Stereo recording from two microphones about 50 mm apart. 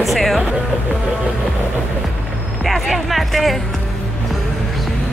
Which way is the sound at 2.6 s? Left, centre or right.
Centre.